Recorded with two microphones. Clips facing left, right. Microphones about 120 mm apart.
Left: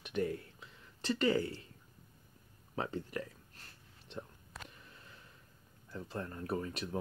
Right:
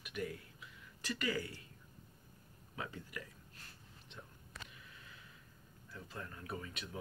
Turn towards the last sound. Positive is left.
turn(degrees=40)  # may be behind; listen again after turning